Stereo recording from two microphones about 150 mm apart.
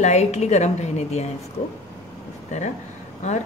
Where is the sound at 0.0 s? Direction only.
50° left (ahead or behind).